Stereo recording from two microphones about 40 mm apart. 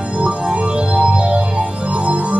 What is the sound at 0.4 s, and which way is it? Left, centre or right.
Music, right.